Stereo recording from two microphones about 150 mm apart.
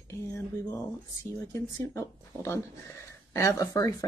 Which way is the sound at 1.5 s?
20° left (ahead or behind).